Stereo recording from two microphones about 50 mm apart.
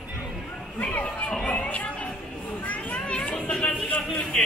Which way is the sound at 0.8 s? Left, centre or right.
Left.